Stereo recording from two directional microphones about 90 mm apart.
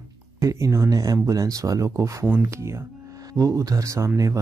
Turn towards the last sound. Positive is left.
turn(degrees=-35)  # may be behind; listen again after turning